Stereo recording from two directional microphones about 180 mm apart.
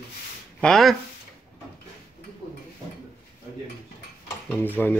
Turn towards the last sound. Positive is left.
turn(degrees=10)  # may be behind; listen again after turning